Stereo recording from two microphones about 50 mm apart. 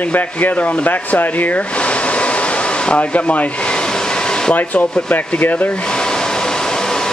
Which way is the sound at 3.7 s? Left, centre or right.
Centre.